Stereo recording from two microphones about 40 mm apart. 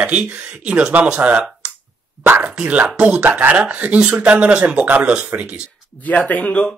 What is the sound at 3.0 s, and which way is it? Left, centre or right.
Speech, right.